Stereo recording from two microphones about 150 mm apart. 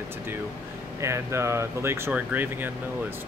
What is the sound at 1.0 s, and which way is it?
A man's voice, 20° right (ahead or behind).